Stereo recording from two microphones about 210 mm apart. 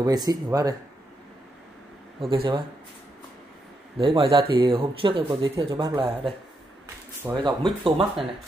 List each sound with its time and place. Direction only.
0.0 s speech: 20° right (ahead or behind)
2.2 s speech: 25° right (ahead or behind)
4.0 s speech: 25° right (ahead or behind)
7.4 s speech: 20° right (ahead or behind)